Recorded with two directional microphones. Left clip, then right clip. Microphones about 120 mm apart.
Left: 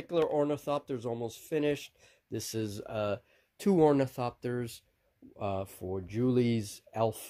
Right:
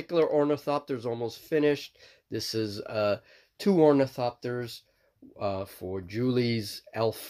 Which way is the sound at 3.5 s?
50° left (ahead or behind).